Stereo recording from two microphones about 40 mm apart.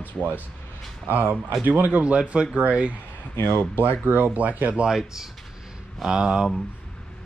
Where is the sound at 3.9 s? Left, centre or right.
Right.